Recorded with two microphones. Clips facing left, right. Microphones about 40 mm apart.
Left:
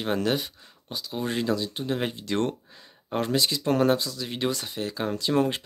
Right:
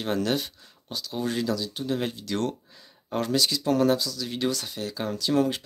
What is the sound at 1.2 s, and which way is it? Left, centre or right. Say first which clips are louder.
Speech: left 1 dB; left.